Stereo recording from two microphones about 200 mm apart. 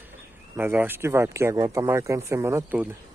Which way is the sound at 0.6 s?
10° right (ahead or behind).